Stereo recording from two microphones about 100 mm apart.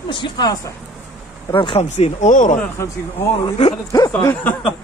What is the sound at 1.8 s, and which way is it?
Speech, 90° left.